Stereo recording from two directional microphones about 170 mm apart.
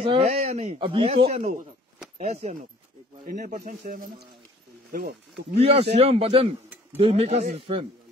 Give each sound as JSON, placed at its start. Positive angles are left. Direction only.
{"t": 0.0, "sound": "speech", "side_deg": -35}
{"t": 3.3, "sound": "speech", "side_deg": -50}
{"t": 5.6, "sound": "speech", "side_deg": -35}